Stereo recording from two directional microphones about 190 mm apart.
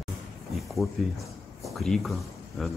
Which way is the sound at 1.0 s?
Centre (ahead or behind).